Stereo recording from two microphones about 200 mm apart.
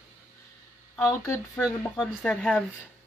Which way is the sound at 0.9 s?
15° left (ahead or behind).